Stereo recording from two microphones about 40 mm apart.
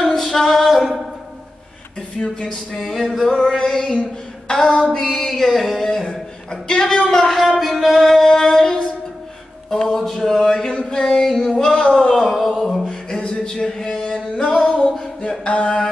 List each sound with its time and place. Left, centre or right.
0.0 s music: centre
2.2 s mantra: left
2.7 s music: centre
5.0 s music: centre
6.5 s speech: centre
7.7 s music: centre
9.7 s a sound: centre
12.8 s a sound: left
15.4 s mantra: left